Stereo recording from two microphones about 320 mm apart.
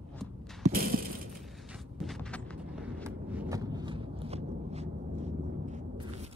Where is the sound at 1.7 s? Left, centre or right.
Centre.